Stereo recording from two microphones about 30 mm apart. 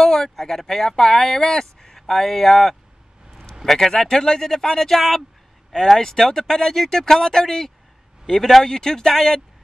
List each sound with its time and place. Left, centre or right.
0.0 s speech: centre
4.1 s speech: centre
8.3 s a man's voice: centre
8.6 s speech: centre